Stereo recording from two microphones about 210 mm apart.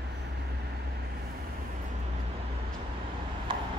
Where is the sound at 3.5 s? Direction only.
25° right (ahead or behind).